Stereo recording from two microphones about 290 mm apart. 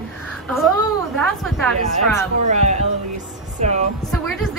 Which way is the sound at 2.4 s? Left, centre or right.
Right.